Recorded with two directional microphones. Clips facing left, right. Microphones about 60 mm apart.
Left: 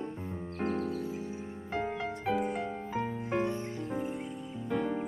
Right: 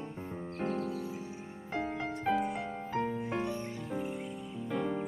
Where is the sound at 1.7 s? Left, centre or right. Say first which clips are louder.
Left 1 dB; centre.